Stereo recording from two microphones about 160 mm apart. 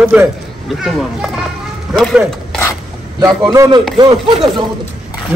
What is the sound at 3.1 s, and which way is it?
A man's voice, 20° right (ahead or behind).